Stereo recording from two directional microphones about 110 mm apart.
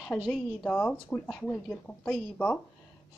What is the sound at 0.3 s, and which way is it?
Speech, 15° left (ahead or behind).